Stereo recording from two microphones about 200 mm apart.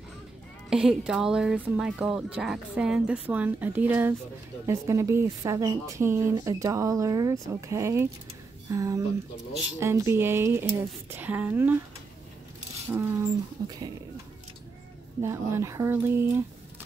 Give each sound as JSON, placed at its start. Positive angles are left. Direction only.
{"t": 0.7, "sound": "speech", "side_deg": -5}
{"t": 12.9, "sound": "speech", "side_deg": -15}
{"t": 15.2, "sound": "speech", "side_deg": -15}